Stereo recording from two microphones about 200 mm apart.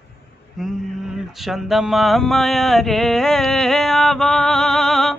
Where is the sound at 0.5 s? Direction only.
Centre (ahead or behind).